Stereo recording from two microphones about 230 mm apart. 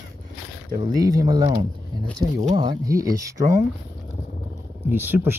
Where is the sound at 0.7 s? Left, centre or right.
Centre.